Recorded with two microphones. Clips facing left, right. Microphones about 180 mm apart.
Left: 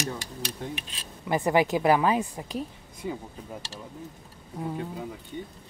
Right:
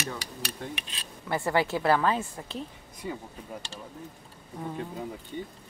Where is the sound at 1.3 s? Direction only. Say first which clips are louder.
Left 4 dB; 15° left (ahead or behind).